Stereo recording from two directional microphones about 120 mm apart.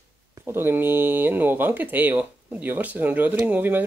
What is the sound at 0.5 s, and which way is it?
Speech, 20° right (ahead or behind).